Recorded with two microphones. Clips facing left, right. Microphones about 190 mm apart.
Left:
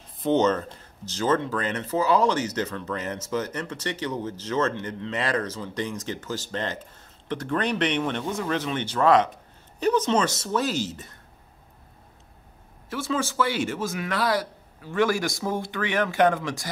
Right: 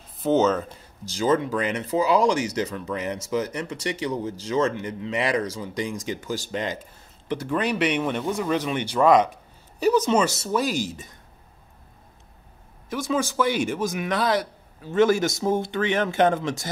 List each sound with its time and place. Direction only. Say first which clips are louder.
0.2 s speech: right 1 dB; 5° right (ahead or behind)
12.9 s a man's voice: right 2 dB; 15° right (ahead or behind)